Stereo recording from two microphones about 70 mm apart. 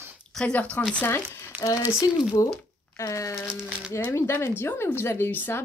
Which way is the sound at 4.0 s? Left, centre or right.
Left.